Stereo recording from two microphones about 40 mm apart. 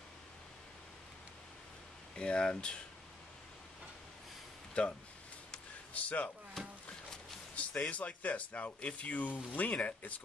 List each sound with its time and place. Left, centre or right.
2.1 s speech: left
4.8 s speech: left
5.9 s speech: left
6.6 s a sound: centre
7.6 s a sound: left
7.9 s speech: left